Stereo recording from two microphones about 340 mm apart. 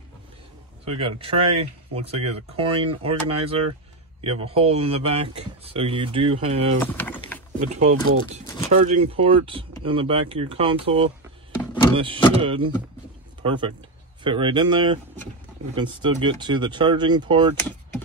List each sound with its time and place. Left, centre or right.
0.8 s speech: centre
4.5 s speech: centre
6.8 s a sound: centre
7.6 s speech: centre
7.9 s speech: right
8.7 s speech: centre